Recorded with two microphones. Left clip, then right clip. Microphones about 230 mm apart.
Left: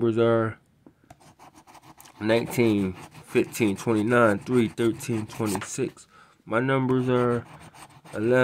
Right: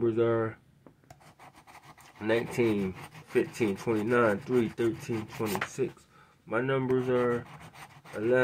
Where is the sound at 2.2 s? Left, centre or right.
Left.